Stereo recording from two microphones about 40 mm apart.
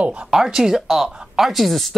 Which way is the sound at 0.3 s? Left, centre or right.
Centre.